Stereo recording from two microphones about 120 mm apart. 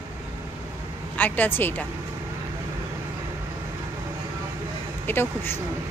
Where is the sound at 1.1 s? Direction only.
15° left (ahead or behind).